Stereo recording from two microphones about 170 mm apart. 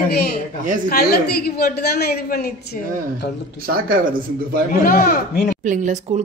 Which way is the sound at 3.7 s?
55° right (ahead or behind).